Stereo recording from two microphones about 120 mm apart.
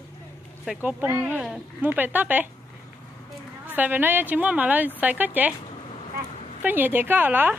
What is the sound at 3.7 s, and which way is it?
A woman's voice, 15° right (ahead or behind).